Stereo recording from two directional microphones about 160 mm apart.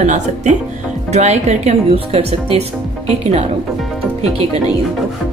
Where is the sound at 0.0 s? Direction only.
50° right (ahead or behind).